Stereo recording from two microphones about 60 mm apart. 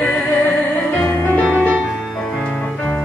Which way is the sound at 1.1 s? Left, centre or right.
Left.